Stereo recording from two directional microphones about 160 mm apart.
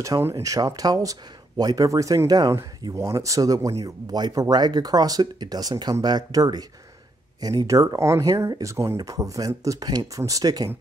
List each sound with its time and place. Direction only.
0.0 s speech: 20° right (ahead or behind)